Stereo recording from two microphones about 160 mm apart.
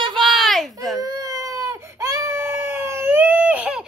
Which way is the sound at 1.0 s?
20° right (ahead or behind).